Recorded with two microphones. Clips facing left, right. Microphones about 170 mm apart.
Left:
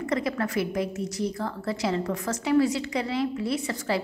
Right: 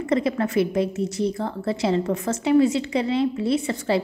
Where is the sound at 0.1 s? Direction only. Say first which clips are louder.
Right 6 dB; 25° right (ahead or behind).